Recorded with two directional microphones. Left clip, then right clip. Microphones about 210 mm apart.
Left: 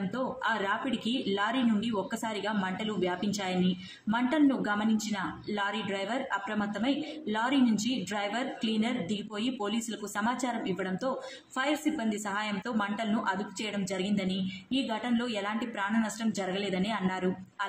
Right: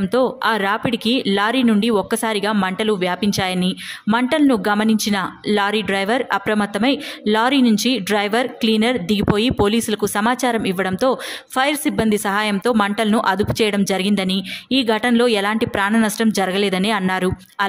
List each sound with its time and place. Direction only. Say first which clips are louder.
0.1 s speech: right 14 dB; 55° right (ahead or behind)